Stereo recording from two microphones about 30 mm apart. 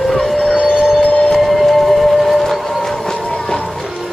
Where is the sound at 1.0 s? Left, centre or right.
Left.